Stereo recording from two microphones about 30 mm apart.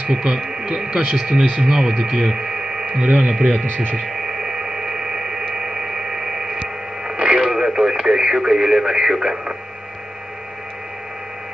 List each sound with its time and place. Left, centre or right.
0.1 s speech: right
3.1 s speech: right
3.6 s speech: left
4.0 s radio: centre